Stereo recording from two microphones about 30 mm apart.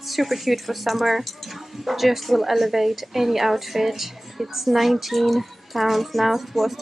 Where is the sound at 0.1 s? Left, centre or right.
Centre.